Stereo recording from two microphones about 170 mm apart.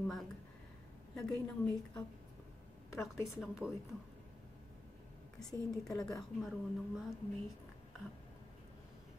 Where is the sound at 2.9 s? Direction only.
Centre (ahead or behind).